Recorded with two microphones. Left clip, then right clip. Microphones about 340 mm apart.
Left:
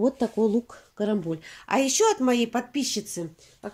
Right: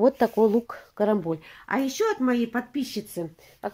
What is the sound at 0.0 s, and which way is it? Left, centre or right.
Speech, right.